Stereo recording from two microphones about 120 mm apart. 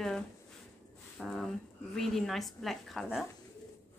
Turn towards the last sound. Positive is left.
turn(degrees=0)  # may be behind; listen again after turning